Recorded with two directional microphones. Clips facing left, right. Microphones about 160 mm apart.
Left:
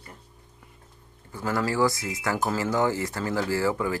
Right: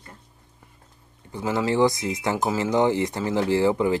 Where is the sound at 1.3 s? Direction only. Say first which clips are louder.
Right 3 dB; 20° right (ahead or behind).